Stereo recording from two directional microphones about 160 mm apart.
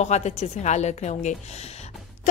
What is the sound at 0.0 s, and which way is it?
A woman's voice, 45° left (ahead or behind).